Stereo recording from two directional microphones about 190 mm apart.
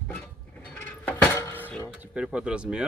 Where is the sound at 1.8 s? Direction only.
10° right (ahead or behind).